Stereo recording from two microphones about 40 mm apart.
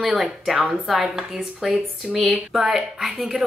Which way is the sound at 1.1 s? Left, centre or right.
Centre.